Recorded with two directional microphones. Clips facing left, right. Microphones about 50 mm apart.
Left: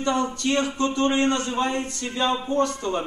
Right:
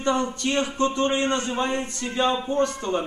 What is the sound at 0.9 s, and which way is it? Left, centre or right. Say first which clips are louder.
Speech: left 1 dB; left.